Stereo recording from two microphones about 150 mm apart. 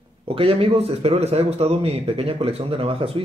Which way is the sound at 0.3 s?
40° right (ahead or behind).